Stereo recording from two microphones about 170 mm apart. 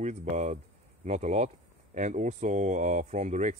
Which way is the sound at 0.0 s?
40° right (ahead or behind).